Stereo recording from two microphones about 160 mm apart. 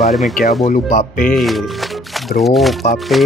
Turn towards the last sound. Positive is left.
turn(degrees=0)  # may be behind; listen again after turning